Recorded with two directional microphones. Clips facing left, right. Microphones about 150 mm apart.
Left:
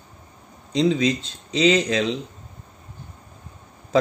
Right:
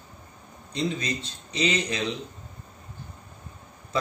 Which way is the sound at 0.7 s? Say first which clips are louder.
Left 9 dB; 90° left.